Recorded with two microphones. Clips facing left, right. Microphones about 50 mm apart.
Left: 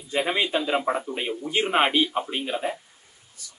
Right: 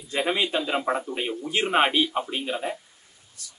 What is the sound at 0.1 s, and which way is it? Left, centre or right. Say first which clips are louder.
A man's voice: left 1 dB; centre.